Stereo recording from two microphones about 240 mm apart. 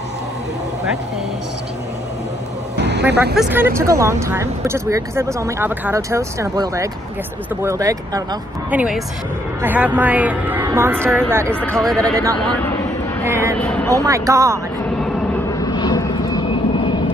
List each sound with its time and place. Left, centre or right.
2.8 s vehicle: right
3.3 s speech: centre
11.6 s speech: centre
13.2 s speech: centre
13.6 s speech: centre
14.0 s speech: centre
15.5 s vehicle: centre